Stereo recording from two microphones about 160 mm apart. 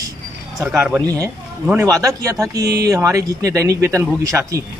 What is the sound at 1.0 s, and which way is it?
A man's voice, 20° right (ahead or behind).